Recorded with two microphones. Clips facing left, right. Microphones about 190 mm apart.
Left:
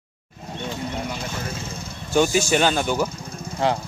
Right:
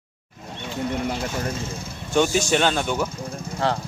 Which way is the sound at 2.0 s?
5° left (ahead or behind).